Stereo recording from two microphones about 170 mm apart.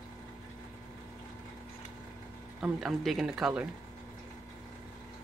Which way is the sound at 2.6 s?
Centre (ahead or behind).